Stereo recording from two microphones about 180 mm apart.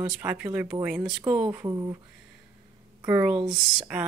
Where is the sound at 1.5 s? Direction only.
20° right (ahead or behind).